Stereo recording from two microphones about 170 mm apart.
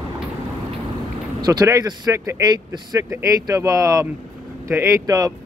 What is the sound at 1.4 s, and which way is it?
Speech, 20° right (ahead or behind).